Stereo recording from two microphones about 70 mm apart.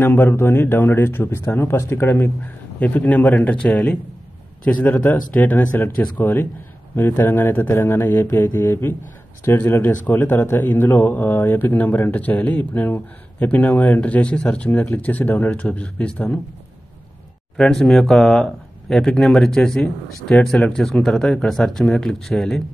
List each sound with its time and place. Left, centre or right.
0.0 s a man's voice: left
2.0 s a man's voice: left
17.6 s speech: centre